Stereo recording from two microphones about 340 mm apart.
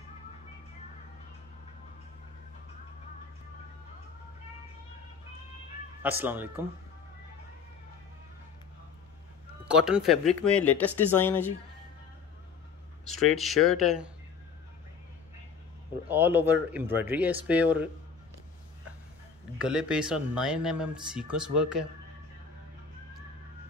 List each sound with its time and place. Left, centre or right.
6.0 s speech: centre
9.7 s speech: centre
13.2 s speech: centre
16.1 s speech: centre
19.6 s speech: centre